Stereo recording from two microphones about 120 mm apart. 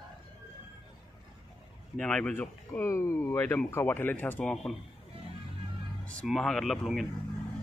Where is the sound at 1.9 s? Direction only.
10° left (ahead or behind).